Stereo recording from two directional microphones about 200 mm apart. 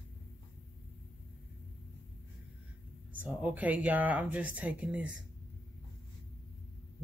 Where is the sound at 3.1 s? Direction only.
10° right (ahead or behind).